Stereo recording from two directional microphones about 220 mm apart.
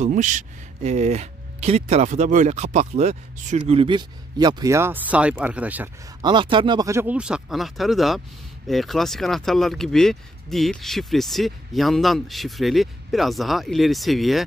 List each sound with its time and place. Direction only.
0.0 s speech: 35° right (ahead or behind); by 5.9 s 5° right (ahead or behind)
6.2 s speech: 20° right (ahead or behind); by 14.4 s centre (ahead or behind)